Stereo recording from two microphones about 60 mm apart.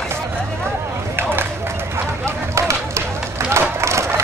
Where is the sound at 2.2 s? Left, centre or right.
Right.